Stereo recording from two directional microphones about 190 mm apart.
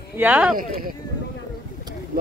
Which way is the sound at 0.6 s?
50° right (ahead or behind).